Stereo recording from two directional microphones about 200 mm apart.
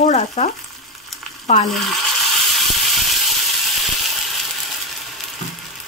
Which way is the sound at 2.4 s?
Centre (ahead or behind).